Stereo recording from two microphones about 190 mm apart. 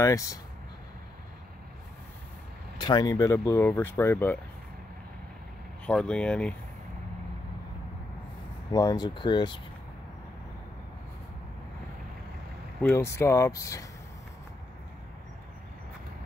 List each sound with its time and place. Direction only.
0.0 s speech: 15° left (ahead or behind)
2.8 s speech: 20° left (ahead or behind)
5.9 s speech: 5° left (ahead or behind)
8.7 s speech: 20° left (ahead or behind)
12.8 s speech: 15° left (ahead or behind)